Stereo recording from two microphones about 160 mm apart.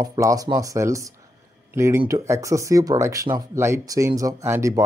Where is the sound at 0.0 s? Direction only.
20° right (ahead or behind).